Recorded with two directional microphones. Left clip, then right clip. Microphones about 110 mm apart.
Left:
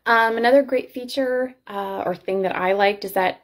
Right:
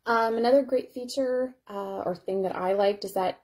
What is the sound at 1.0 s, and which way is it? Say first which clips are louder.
Speech: left 5 dB; 35° right (ahead or behind).